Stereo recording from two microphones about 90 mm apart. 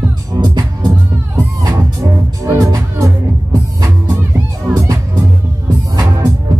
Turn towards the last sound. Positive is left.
turn(degrees=-40)  # may be behind; listen again after turning